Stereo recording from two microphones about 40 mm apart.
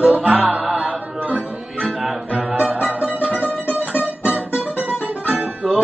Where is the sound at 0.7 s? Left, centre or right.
Right.